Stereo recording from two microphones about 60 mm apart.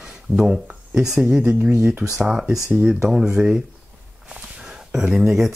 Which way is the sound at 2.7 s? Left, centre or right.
Right.